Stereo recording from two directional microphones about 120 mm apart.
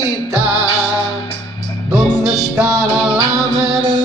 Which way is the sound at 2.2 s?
5° right (ahead or behind).